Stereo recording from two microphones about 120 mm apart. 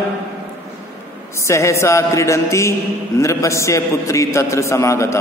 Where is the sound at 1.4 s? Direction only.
25° left (ahead or behind).